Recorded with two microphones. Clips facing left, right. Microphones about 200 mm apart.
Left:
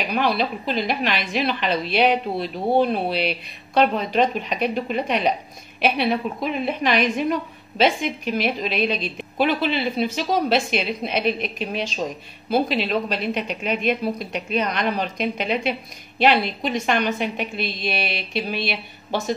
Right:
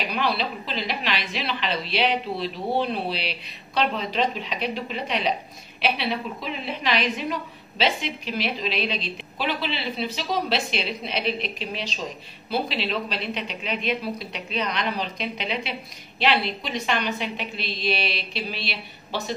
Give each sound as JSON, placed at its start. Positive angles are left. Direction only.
{"t": 0.1, "sound": "a woman's voice", "side_deg": 50}